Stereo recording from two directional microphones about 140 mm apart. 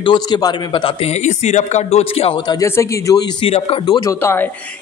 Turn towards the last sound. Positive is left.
turn(degrees=15)  # may be behind; listen again after turning